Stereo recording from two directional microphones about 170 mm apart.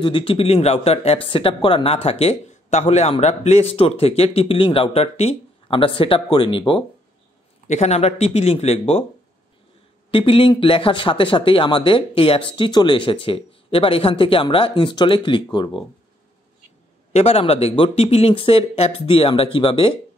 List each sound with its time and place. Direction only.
0.0 s speech: 30° left (ahead or behind)
7.6 s speech: 40° left (ahead or behind)
10.1 s speech: 30° left (ahead or behind)
17.1 s speech: 35° left (ahead or behind)